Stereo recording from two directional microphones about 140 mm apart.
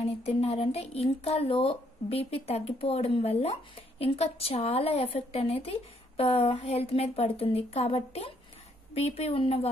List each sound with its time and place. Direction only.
0.0 s speech: 45° left (ahead or behind)